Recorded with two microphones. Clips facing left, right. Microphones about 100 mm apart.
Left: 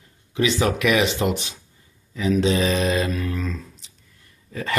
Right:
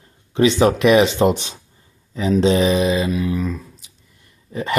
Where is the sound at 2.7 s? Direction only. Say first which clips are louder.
Right 4 dB; 10° right (ahead or behind).